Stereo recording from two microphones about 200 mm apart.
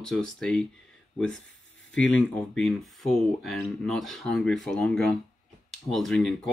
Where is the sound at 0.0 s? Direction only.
5° left (ahead or behind).